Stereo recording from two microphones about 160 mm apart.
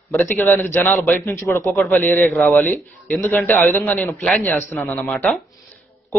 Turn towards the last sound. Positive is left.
turn(degrees=5)  # may be behind; listen again after turning